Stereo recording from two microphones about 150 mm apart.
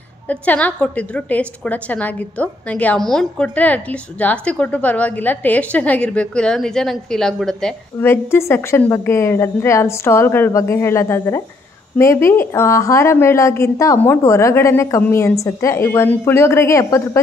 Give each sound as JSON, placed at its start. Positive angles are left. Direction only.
{"t": 0.3, "sound": "a woman's voice", "side_deg": 10}
{"t": 8.0, "sound": "a woman's voice", "side_deg": 15}